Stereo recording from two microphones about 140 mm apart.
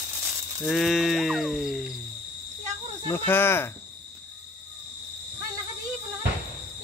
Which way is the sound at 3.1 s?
15° left (ahead or behind).